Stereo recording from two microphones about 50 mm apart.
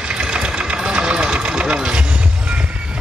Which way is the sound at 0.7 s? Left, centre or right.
Centre.